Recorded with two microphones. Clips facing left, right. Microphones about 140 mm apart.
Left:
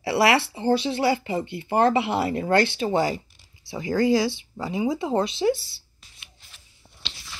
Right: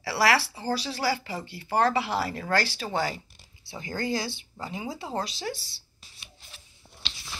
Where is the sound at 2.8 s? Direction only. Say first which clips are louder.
Left 7 dB; 25° left (ahead or behind).